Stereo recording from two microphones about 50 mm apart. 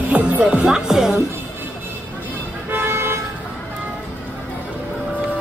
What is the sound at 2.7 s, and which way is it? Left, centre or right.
Vehicle, right.